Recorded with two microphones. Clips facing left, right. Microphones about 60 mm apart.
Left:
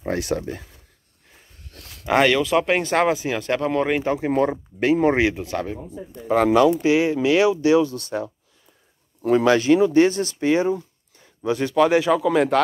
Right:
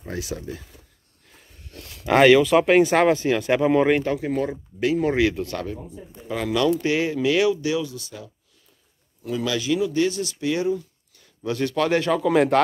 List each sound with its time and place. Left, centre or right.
0.0 s speech: left
2.0 s speech: centre
3.4 s speech: centre
4.2 s speech: left
4.5 s speech: left
4.9 s speech: left
6.2 s speech: left
6.5 s speech: centre; by 7.9 s left
7.9 s speech: left
10.5 s a sound: left
11.7 s speech: centre